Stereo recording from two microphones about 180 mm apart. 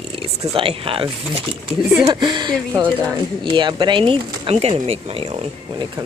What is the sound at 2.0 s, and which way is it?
Speech, 25° right (ahead or behind).